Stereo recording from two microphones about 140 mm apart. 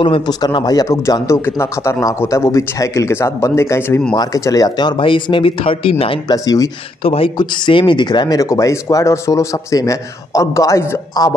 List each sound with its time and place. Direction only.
0.0 s speech: 35° left (ahead or behind)
6.3 s speech: 25° left (ahead or behind)
7.0 s speech: 40° left (ahead or behind); by 11.3 s 25° left (ahead or behind)